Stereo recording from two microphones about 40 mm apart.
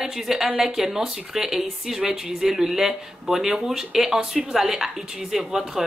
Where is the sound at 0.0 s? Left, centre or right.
Centre.